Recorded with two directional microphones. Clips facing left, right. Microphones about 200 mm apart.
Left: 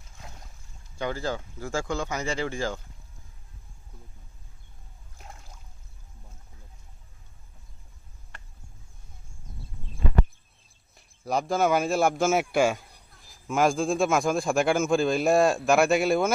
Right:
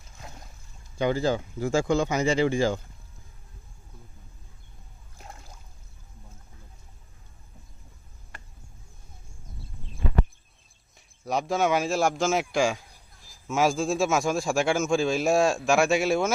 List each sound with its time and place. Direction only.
0.9 s speech: 20° right (ahead or behind)
11.0 s a man's voice: centre (ahead or behind)